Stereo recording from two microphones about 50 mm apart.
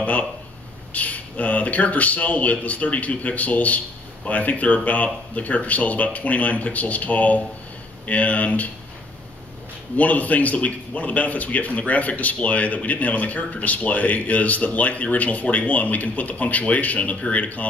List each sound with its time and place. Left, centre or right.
0.0 s a man's voice: left
9.9 s a man's voice: left